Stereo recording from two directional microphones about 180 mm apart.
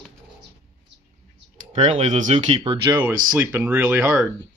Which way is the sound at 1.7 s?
35° right (ahead or behind).